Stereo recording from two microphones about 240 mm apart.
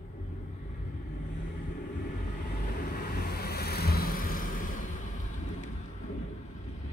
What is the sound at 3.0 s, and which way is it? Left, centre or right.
Vehicle, left.